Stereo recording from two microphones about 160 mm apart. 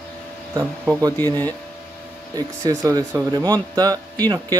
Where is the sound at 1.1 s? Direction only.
15° left (ahead or behind).